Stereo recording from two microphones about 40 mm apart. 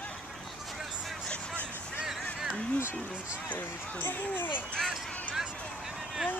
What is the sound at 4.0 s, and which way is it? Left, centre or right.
Speech, left.